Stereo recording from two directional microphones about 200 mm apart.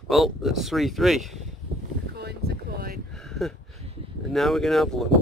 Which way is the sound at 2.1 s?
55° right (ahead or behind).